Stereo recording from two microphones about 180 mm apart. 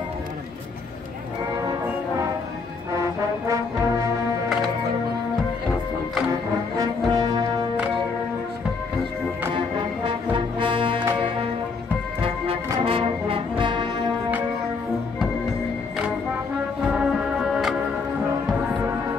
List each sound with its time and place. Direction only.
3.0 s brass instrument: 15° right (ahead or behind)
6.8 s brass instrument: 20° right (ahead or behind)
10.0 s brass instrument: 30° right (ahead or behind)
12.8 s brass instrument: 30° right (ahead or behind)
16.9 s music: 5° right (ahead or behind)